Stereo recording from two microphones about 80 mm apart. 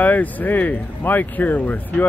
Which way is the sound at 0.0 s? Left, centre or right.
Left.